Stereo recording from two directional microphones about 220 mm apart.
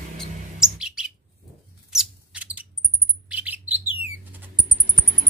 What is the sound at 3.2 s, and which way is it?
Bird, 5° right (ahead or behind).